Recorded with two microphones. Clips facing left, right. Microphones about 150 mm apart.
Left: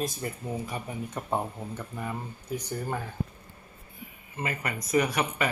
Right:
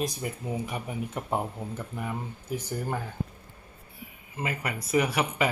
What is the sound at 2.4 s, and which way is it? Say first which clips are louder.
Speech: even; 25° right (ahead or behind).